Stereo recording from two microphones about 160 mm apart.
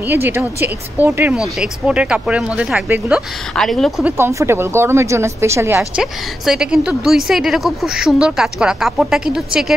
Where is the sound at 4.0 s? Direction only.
15° right (ahead or behind).